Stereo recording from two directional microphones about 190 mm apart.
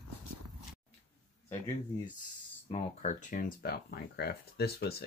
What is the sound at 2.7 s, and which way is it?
Speech, 35° left (ahead or behind).